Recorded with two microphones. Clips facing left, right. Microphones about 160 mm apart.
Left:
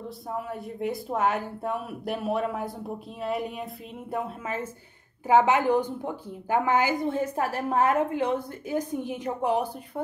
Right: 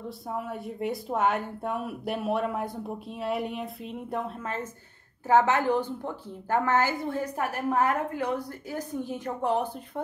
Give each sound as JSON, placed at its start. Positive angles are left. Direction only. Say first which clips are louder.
{"t": 0.3, "sound": "a woman's voice", "louder": "even", "side_deg": 0}